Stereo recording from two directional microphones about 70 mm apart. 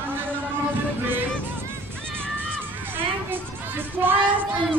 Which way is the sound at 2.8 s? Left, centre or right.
Right.